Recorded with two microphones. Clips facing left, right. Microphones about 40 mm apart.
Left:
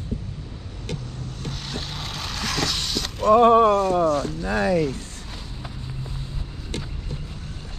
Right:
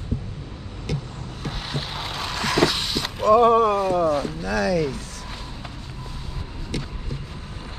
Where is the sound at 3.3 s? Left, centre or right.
Left.